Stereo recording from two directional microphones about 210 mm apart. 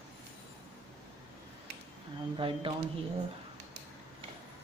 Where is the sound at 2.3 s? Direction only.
25° right (ahead or behind).